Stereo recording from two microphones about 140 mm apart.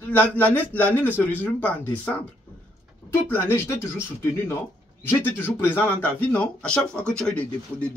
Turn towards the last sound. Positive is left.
turn(degrees=10)  # may be behind; listen again after turning